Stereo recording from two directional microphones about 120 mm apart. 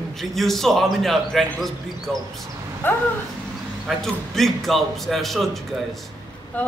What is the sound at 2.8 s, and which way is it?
Speech, 15° left (ahead or behind).